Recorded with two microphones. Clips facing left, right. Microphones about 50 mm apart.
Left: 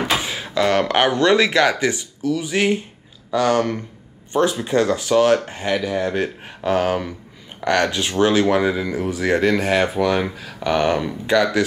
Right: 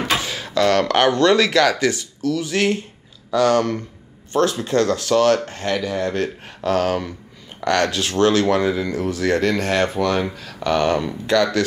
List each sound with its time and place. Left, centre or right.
0.2 s speech: centre